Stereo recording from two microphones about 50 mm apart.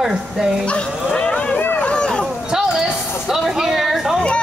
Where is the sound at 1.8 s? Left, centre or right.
Centre.